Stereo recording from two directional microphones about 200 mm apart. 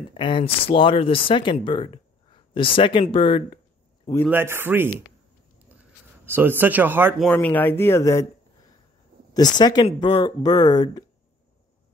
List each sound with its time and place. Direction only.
0.1 s speech: 25° left (ahead or behind)
4.3 s speech: 10° right (ahead or behind)
7.2 s speech: 5° left (ahead or behind)
9.3 s speech: 20° left (ahead or behind)